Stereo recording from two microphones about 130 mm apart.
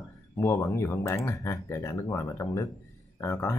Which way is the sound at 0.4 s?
20° left (ahead or behind).